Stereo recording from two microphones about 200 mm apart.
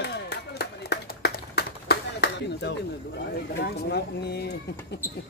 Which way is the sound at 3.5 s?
55° left (ahead or behind).